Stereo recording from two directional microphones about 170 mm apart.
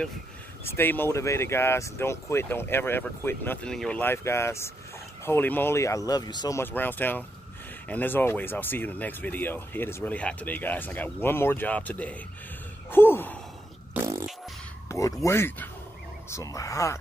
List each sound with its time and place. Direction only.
0.7 s speech: 10° left (ahead or behind)
6.6 s speech: 10° left (ahead or behind)
13.9 s beatboxing: 20° right (ahead or behind)
14.9 s speech: 20° left (ahead or behind)